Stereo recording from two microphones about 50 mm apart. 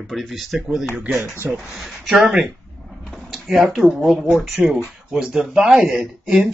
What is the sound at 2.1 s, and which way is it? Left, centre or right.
Speech, right.